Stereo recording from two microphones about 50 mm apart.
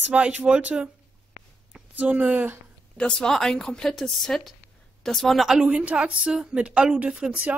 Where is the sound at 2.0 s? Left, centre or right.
Right.